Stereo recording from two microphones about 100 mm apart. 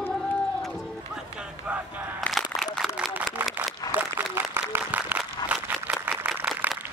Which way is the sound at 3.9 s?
20° right (ahead or behind).